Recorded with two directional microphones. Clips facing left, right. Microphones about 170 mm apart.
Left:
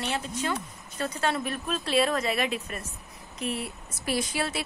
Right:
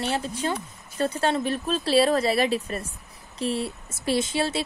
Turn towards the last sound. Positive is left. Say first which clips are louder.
# right 5 dB
turn(degrees=-25)  # may be behind; listen again after turning